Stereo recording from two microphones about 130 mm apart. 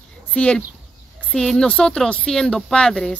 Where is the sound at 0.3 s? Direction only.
10° left (ahead or behind).